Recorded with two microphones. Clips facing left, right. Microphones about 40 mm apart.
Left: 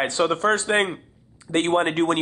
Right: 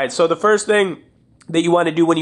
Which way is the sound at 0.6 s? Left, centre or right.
Right.